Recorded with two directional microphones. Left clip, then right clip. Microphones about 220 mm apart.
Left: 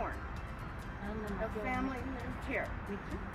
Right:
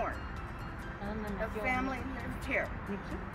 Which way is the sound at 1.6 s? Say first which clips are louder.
Right 4 dB; 30° right (ahead or behind).